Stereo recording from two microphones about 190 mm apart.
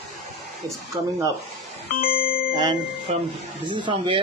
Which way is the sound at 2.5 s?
20° right (ahead or behind).